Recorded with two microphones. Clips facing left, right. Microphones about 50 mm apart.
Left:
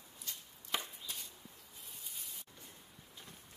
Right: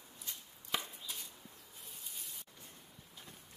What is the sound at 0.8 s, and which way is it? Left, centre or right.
Chopping, centre.